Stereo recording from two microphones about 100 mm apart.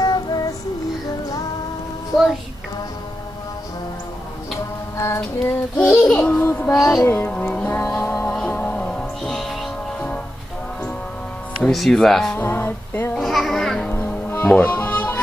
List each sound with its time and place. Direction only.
0.0 s child singing: 45° left (ahead or behind)
4.9 s child singing: 30° left (ahead or behind)
6.0 s a sound: 10° left (ahead or behind)
6.7 s music: centre (ahead or behind)
7.0 s music: 20° left (ahead or behind); by 10.0 s centre (ahead or behind)
11.6 s speech: centre (ahead or behind)
12.4 s a sound: 20° left (ahead or behind)
13.1 s babbling: centre (ahead or behind)
13.8 s music: 20° left (ahead or behind)
14.4 s music: 10° left (ahead or behind)